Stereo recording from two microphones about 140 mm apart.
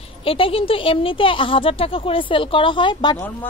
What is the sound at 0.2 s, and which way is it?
Speech, 40° left (ahead or behind).